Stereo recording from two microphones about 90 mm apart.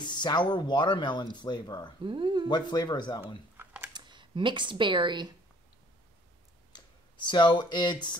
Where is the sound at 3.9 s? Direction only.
55° right (ahead or behind).